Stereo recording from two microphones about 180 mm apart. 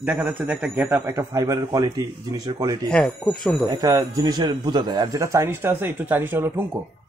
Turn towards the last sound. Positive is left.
turn(degrees=-15)  # may be behind; listen again after turning